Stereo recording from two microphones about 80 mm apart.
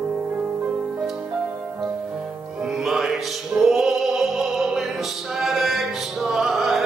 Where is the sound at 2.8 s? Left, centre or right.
Centre.